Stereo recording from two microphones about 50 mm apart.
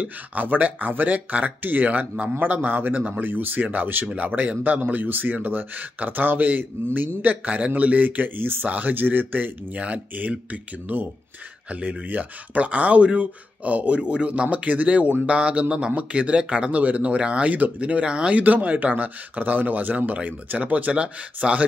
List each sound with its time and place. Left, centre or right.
0.0 s speech: right
9.8 s speech: right
18.4 s speech: right